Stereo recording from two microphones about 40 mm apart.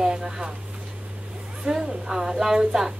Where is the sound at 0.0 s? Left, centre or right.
Right.